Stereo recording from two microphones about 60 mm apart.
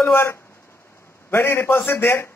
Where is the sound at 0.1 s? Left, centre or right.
Left.